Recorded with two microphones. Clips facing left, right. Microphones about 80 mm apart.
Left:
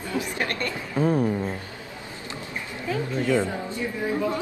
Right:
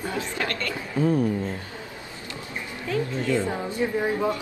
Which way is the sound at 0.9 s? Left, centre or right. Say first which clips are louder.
Even; left.